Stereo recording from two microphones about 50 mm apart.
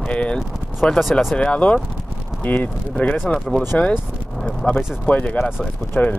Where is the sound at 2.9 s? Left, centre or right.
Left.